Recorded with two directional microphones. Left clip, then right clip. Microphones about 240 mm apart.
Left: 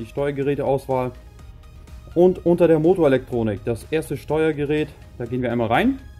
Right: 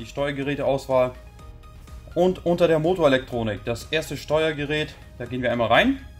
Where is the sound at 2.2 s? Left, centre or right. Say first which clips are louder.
Left 4 dB; left.